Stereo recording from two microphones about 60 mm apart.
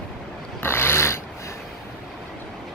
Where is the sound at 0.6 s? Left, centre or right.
Left.